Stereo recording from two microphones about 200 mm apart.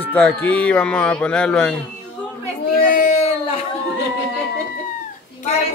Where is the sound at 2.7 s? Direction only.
45° left (ahead or behind).